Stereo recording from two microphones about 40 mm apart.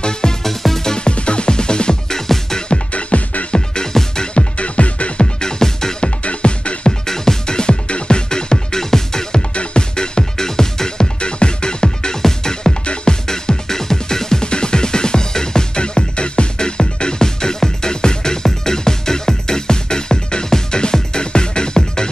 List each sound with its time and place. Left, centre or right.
0.0 s music: centre
0.4 s music: centre
0.9 s music: left
2.7 s music: left
3.5 s music: centre
4.3 s music: left; by 6.0 s centre
6.0 s music: left
7.1 s music: centre
11.1 s music: left
12.8 s music: left
13.3 s music: centre